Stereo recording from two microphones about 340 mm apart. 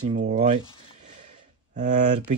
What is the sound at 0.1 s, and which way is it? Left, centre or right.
Speech, centre.